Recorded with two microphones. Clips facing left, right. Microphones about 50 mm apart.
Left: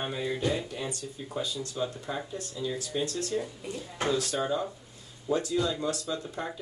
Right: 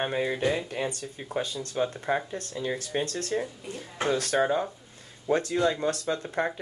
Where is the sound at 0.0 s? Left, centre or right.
Right.